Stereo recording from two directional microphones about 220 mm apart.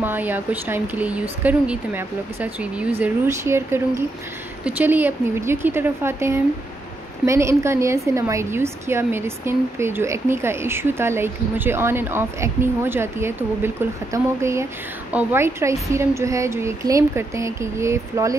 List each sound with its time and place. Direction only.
0.0 s a woman's voice: 10° right (ahead or behind)